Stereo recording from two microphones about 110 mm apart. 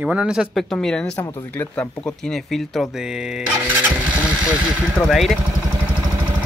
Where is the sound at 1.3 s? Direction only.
20° left (ahead or behind); by 3.4 s 5° right (ahead or behind).